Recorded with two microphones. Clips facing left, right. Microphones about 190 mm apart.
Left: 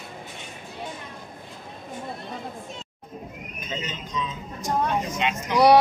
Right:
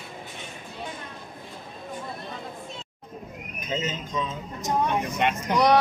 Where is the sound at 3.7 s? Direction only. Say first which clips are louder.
Right 3 dB; 45° right (ahead or behind).